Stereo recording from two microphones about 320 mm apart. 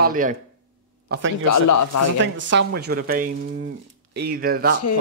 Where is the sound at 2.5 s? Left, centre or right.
Right.